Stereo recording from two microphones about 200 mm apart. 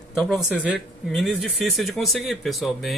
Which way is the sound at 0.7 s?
Centre (ahead or behind).